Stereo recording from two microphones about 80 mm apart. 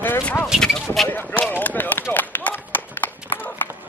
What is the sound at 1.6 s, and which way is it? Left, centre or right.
Run, left.